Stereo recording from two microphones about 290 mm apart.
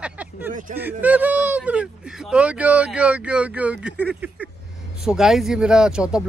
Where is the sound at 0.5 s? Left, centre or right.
Right.